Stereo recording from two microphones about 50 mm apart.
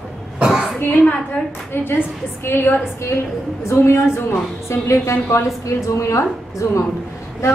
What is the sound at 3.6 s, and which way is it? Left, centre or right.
A woman's voice, left.